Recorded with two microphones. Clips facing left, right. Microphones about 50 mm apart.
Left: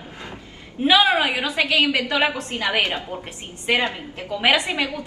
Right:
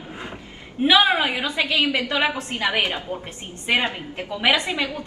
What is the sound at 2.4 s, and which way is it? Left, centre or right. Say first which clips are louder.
Speech: even; right.